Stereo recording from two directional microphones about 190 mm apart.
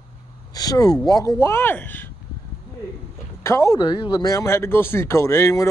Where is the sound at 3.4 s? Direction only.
15° left (ahead or behind).